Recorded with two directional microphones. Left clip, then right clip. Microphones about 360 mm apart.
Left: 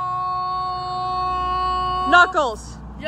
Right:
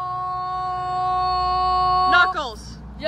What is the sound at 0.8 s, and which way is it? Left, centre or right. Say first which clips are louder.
Music: right 2 dB; right.